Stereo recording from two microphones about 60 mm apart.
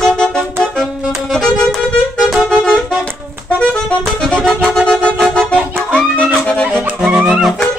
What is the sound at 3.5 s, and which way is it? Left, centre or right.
Music, centre.